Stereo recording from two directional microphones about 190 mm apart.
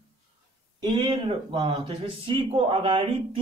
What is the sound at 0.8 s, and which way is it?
Speech, 25° right (ahead or behind).